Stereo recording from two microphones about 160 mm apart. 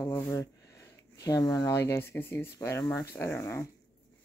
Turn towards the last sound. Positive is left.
turn(degrees=15)  # may be behind; listen again after turning